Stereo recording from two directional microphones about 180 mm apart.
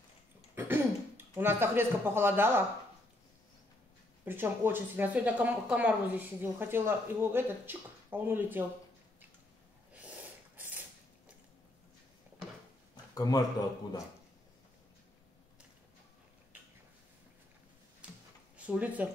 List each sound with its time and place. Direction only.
0.6 s speech: 10° right (ahead or behind)
4.2 s speech: 10° right (ahead or behind)
9.9 s snort: 10° right (ahead or behind)
12.9 s a sound: 20° left (ahead or behind)
18.0 s a sound: 10° right (ahead or behind)
18.6 s speech: 10° right (ahead or behind)